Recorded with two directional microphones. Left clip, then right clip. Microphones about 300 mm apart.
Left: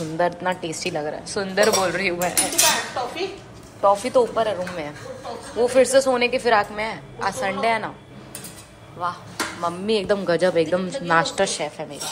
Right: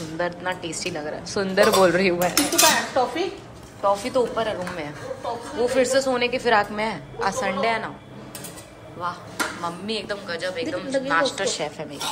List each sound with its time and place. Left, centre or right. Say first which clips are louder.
0.4 s a woman's voice: left 3 dB; centre
2.5 s dishes: right 3 dB; right
3.8 s a woman's voice: left 4 dB; centre
9.0 s a woman's voice: left 1 dB; centre